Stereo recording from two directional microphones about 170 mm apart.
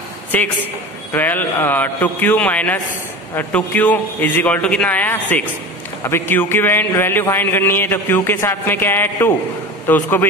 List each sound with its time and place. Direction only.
0.3 s a man's voice: 10° left (ahead or behind)